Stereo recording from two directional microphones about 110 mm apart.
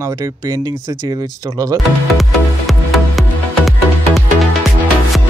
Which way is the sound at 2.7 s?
Centre (ahead or behind).